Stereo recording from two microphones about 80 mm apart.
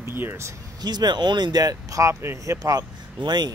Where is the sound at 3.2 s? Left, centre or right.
Right.